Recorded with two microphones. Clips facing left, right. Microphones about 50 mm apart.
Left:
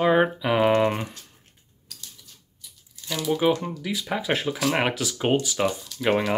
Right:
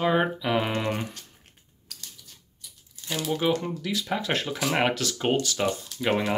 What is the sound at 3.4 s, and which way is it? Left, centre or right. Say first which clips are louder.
Speech: left 2 dB; centre.